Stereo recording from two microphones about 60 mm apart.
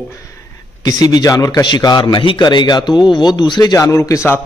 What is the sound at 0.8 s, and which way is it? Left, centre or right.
A man's voice, left.